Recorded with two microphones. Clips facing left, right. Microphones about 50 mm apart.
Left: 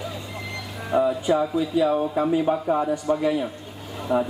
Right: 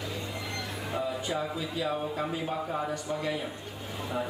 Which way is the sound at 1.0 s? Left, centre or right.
Centre.